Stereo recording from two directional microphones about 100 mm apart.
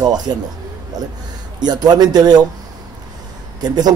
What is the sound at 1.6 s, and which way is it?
Speech, 45° right (ahead or behind).